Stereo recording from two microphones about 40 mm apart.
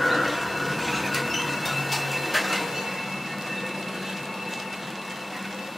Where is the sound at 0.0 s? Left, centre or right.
Centre.